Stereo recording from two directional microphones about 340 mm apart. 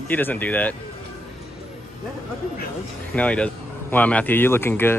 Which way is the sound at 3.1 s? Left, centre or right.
Centre.